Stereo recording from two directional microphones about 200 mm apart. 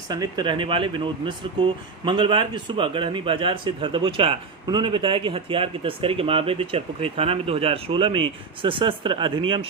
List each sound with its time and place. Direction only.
0.1 s speech: 20° right (ahead or behind)